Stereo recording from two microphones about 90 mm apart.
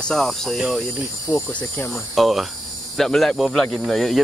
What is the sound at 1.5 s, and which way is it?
Speech, 15° left (ahead or behind).